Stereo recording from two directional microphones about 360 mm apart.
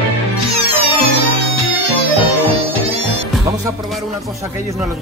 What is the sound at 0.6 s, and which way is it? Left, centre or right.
Music, centre.